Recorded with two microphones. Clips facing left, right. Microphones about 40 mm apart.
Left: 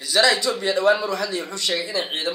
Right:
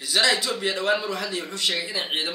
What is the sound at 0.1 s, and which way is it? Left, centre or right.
A man's voice, centre.